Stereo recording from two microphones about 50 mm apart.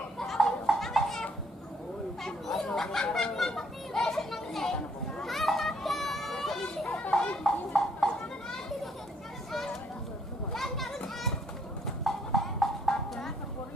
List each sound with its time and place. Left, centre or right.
0.2 s a sound: centre
2.2 s chatter: centre
3.2 s children playing: centre
6.9 s children playing: centre
7.4 s children playing: centre
10.5 s children playing: centre
11.8 s clip-clop: centre